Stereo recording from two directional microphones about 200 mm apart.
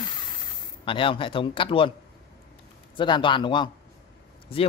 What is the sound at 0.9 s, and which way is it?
Speech, 25° left (ahead or behind).